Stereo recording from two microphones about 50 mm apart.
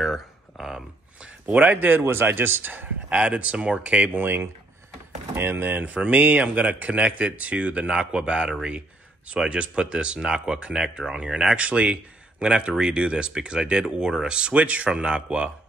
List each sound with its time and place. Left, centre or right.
0.0 s a sound: centre
1.2 s speech: right
2.0 s speech: right
3.1 s speech: right
4.1 s speech: right; by 11.5 s centre
11.5 s speech: right